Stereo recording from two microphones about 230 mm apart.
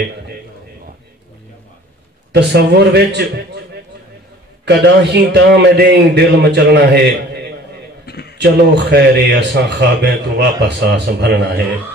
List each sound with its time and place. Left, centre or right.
2.3 s a man's voice: right
4.6 s a man's voice: right
8.1 s a sound: left
8.4 s a man's voice: right